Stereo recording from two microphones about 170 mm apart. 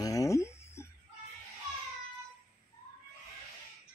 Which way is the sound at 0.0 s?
20° left (ahead or behind).